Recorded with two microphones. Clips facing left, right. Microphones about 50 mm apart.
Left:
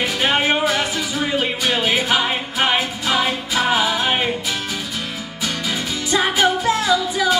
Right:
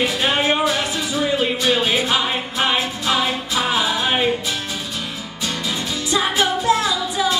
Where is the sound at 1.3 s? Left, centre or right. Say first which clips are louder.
Right 1 dB; left; by 4.2 s centre.